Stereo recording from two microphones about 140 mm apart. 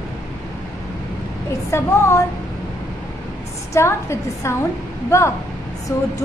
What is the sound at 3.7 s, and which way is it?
A woman's voice, 20° left (ahead or behind).